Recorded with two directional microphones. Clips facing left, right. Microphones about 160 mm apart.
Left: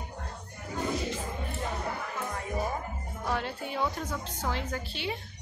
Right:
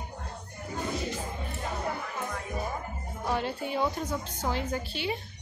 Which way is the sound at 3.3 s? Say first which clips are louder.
Right 2 dB; 5° right (ahead or behind).